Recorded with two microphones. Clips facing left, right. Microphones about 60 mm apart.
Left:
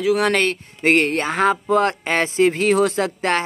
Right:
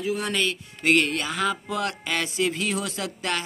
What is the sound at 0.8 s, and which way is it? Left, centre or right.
Speech, left.